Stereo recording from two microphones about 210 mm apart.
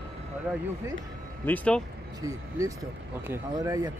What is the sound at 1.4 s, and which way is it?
Speech, 5° left (ahead or behind).